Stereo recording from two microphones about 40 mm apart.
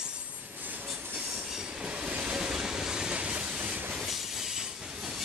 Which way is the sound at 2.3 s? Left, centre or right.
Centre.